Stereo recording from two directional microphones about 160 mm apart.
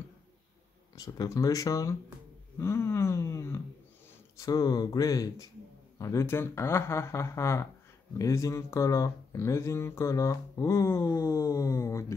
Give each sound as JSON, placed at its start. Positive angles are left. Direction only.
{"t": 0.9, "sound": "speech", "side_deg": 25}